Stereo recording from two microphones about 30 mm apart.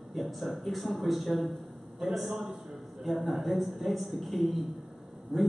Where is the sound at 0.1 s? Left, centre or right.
Centre.